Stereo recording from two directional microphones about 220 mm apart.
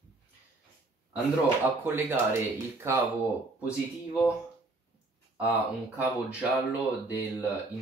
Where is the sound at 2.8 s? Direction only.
10° right (ahead or behind).